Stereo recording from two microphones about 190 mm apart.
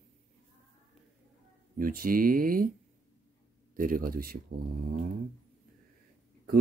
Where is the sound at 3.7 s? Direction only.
45° right (ahead or behind).